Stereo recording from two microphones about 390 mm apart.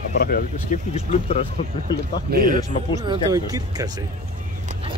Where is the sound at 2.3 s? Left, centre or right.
Right.